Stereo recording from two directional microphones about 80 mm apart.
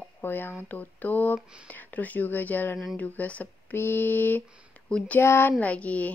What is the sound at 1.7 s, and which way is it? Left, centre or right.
A woman's voice, left.